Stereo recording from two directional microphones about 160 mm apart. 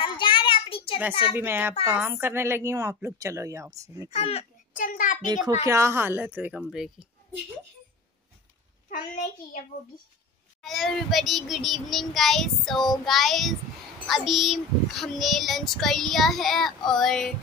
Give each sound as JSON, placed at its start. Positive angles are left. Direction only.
{"t": 0.0, "sound": "child singing", "side_deg": 30}
{"t": 1.3, "sound": "speech", "side_deg": -15}
{"t": 4.1, "sound": "a child's voice", "side_deg": 40}
{"t": 4.7, "sound": "a sound", "side_deg": 60}
{"t": 5.7, "sound": "speech", "side_deg": -15}
{"t": 8.9, "sound": "a child's voice", "side_deg": 55}
{"t": 10.6, "sound": "a child's voice", "side_deg": 0}